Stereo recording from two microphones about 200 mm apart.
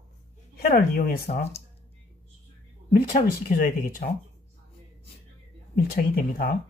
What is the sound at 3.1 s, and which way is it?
Speech, 40° left (ahead or behind).